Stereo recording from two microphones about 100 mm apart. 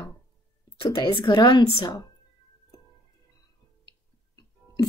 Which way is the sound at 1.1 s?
55° left (ahead or behind).